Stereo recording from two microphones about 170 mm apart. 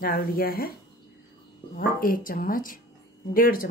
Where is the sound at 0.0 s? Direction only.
60° left (ahead or behind).